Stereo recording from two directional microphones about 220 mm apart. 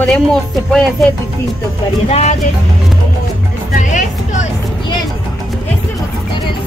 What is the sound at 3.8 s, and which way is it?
Music, 35° left (ahead or behind).